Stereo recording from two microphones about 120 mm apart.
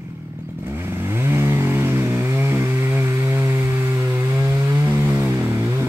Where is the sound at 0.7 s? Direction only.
20° right (ahead or behind).